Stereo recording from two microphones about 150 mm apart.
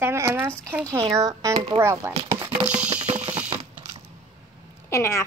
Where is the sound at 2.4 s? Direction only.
15° right (ahead or behind).